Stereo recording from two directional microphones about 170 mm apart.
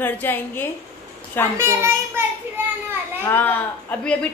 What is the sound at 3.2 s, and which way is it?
Speech, 10° left (ahead or behind).